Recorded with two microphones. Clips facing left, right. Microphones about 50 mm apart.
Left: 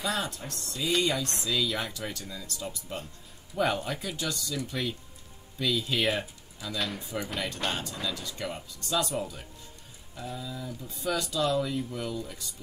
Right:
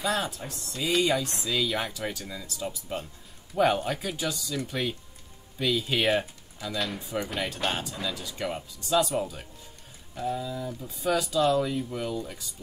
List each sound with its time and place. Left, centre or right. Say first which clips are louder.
0.0 s speech: right 3 dB; centre
5.6 s speech: right 2 dB; centre
6.8 s speech: right 2 dB; centre